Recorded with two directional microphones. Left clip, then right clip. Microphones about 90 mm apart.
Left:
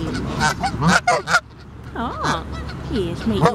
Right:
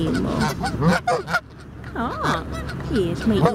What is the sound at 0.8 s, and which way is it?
Goose, 20° left (ahead or behind).